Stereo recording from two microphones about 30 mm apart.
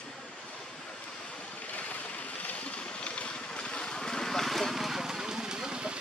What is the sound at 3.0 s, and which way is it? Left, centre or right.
Boat, left.